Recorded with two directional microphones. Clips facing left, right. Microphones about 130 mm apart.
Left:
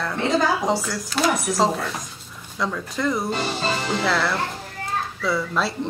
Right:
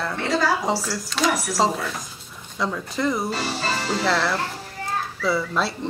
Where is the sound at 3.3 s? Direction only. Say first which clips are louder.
Left 2 dB; 20° left (ahead or behind).